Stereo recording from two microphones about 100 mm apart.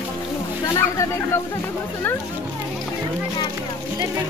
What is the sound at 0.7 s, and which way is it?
Speech, 30° left (ahead or behind).